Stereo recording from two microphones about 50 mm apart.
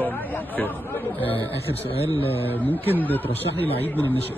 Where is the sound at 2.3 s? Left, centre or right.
Left.